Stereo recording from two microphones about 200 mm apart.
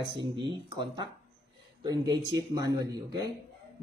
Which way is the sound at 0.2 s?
25° right (ahead or behind).